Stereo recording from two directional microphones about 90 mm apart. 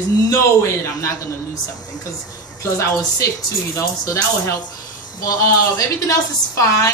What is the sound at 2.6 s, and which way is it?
A woman's voice, 35° left (ahead or behind).